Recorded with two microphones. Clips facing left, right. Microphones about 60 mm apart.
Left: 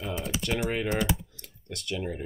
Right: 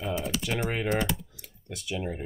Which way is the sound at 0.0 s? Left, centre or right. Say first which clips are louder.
Right 2 dB; centre.